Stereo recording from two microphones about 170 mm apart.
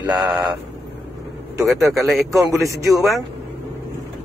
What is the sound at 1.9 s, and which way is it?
A man's voice, centre (ahead or behind).